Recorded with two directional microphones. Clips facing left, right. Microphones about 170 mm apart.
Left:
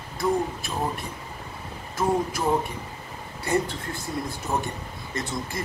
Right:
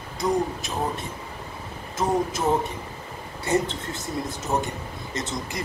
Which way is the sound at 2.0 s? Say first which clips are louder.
Right 1 dB; 25° right (ahead or behind).